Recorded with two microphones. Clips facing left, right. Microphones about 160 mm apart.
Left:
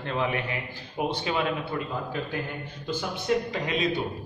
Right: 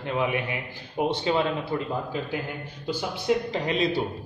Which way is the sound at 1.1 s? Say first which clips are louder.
Right 4 dB; 25° right (ahead or behind).